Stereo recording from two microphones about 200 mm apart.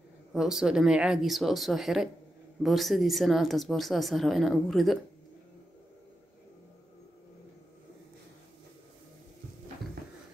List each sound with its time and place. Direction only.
0.3 s speech: centre (ahead or behind)